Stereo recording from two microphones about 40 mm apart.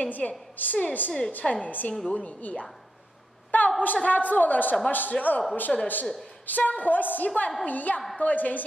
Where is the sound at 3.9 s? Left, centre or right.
Left.